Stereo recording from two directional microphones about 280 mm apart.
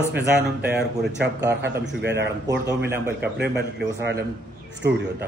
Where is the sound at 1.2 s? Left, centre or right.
Right.